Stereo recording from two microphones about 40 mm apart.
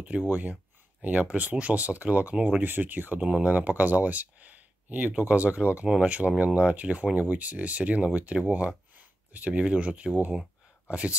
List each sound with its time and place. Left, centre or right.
0.3 s speech: right
2.6 s speech: right
3.2 s speech: right
8.9 s a sound: right
9.5 s speech: right